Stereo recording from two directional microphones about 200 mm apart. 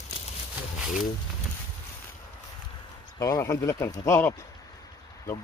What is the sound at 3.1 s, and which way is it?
Speech, 15° left (ahead or behind).